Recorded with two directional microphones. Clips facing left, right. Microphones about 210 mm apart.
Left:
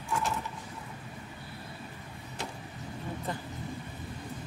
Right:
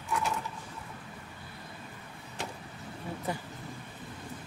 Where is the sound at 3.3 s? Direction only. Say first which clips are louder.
Right 2 dB; 10° right (ahead or behind).